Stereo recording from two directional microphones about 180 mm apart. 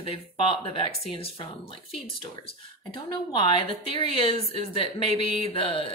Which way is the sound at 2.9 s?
25° left (ahead or behind).